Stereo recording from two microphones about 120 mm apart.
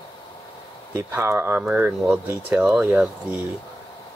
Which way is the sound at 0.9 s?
20° right (ahead or behind).